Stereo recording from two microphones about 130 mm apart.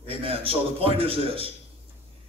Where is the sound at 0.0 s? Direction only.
45° right (ahead or behind).